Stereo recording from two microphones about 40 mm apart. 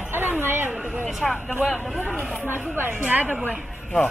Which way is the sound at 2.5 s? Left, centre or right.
Right.